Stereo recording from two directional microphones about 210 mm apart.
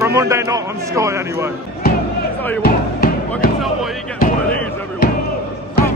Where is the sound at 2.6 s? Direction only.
45° left (ahead or behind).